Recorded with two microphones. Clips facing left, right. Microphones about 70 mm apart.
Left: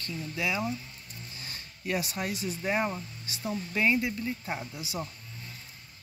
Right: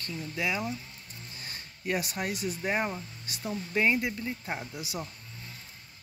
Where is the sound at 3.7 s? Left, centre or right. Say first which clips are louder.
Even; right.